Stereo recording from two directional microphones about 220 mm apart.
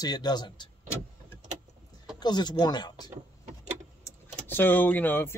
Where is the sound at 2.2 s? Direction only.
20° left (ahead or behind).